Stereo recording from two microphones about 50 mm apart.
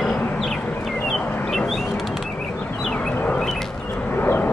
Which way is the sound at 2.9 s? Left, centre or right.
Centre.